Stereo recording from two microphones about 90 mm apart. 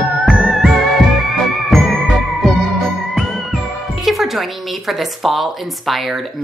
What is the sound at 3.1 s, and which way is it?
Speech, centre (ahead or behind).